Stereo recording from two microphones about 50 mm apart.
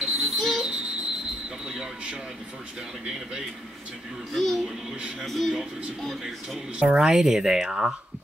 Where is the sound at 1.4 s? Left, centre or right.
Centre.